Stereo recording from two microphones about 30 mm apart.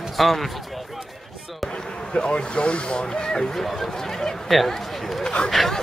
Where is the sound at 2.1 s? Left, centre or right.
Left.